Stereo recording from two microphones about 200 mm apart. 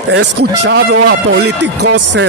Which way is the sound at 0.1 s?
60° right (ahead or behind).